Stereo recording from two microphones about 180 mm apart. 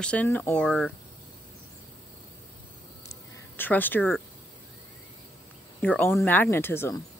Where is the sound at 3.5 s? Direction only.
10° left (ahead or behind).